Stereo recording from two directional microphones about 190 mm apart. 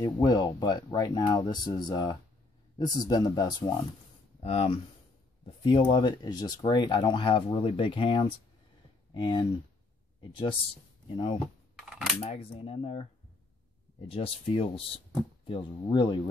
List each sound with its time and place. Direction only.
0.0 s speech: 20° left (ahead or behind)
4.4 s speech: 35° left (ahead or behind)
11.9 s a sound: centre (ahead or behind)
12.2 s speech: 35° left (ahead or behind)
14.0 s speech: 30° left (ahead or behind)